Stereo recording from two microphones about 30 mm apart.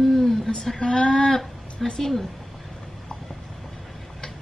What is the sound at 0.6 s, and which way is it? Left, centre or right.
Speech, centre.